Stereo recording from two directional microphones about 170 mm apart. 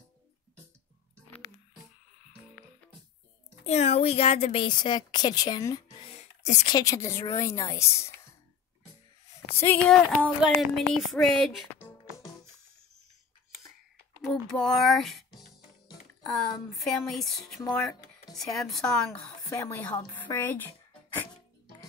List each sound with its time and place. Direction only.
3.6 s a woman's voice: 40° left (ahead or behind); by 5.8 s 20° left (ahead or behind)
5.9 s a sound: 35° left (ahead or behind)
6.7 s a woman's voice: 20° left (ahead or behind)
9.5 s a woman's voice: 10° left (ahead or behind)
10.4 s a woman's voice: centre (ahead or behind)
14.2 s speech: centre (ahead or behind)
16.3 s a woman's voice: centre (ahead or behind)
19.5 s a woman's voice: 15° left (ahead or behind)
20.3 s music: 10° left (ahead or behind)